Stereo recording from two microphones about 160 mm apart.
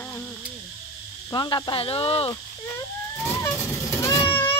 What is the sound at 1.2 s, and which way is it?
Speech, 25° left (ahead or behind).